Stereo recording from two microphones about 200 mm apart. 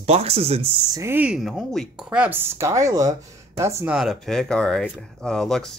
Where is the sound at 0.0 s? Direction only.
30° right (ahead or behind).